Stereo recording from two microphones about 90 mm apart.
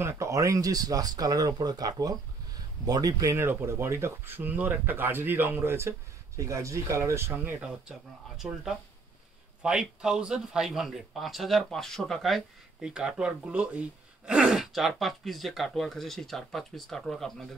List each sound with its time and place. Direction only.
0.0 s speech: 35° right (ahead or behind)
3.3 s speech: 30° right (ahead or behind)
7.3 s speech: 20° right (ahead or behind)
8.4 s speech: 10° right (ahead or behind)